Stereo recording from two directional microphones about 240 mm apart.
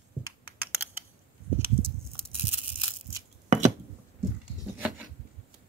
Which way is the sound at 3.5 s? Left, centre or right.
Right.